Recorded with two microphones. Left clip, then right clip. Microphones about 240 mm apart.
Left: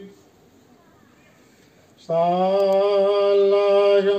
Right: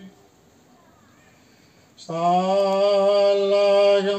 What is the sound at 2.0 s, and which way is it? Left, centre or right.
Mantra, right.